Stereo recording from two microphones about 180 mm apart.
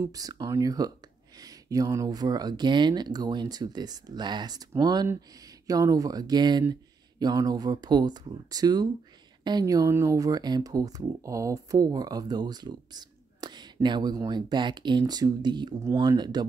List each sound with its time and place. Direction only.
0.0 s speech: 20° right (ahead or behind)